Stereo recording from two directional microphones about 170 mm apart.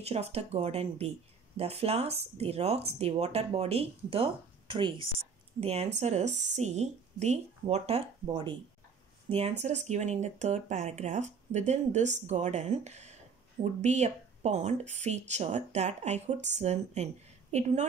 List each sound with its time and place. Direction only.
0.0 s speech: 35° right (ahead or behind)